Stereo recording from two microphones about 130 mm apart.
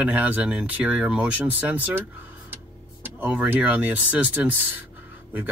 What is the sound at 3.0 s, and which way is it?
Speech, 10° right (ahead or behind).